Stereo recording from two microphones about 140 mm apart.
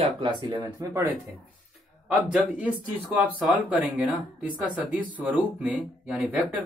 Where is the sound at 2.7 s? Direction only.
10° right (ahead or behind).